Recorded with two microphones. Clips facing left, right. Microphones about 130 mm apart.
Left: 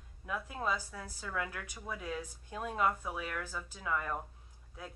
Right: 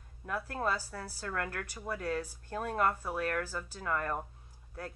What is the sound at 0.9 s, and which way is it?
Speech, 5° left (ahead or behind).